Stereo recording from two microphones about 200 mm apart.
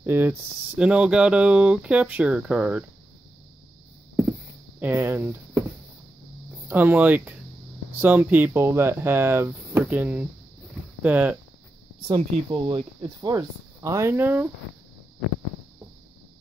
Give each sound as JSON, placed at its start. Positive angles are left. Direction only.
{"t": 0.0, "sound": "speech", "side_deg": -10}
{"t": 4.3, "sound": "a sound", "side_deg": -10}
{"t": 6.7, "sound": "speech", "side_deg": -10}
{"t": 12.1, "sound": "speech", "side_deg": -25}